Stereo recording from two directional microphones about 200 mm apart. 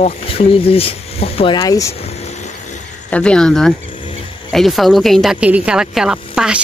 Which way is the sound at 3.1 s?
5° left (ahead or behind).